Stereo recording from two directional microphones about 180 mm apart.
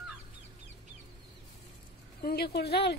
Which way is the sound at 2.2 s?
60° left (ahead or behind).